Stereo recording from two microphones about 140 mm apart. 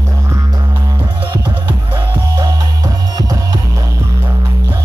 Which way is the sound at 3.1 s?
30° right (ahead or behind).